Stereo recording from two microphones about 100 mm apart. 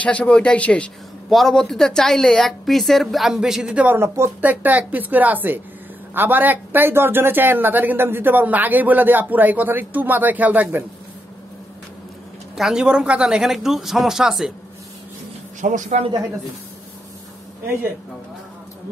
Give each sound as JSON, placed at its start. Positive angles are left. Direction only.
{"t": 0.0, "sound": "a man's voice", "side_deg": 10}
{"t": 12.5, "sound": "a woman's voice", "side_deg": -5}
{"t": 15.9, "sound": "speech", "side_deg": -90}